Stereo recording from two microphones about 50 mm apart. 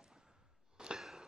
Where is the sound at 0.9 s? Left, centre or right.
Centre.